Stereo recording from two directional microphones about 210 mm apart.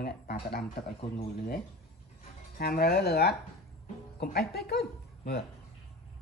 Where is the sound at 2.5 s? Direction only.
45° left (ahead or behind).